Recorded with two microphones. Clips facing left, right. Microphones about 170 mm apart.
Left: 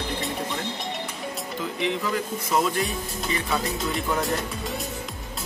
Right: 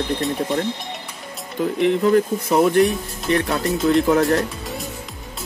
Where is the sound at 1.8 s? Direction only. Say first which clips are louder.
Right 11 dB; 55° right (ahead or behind).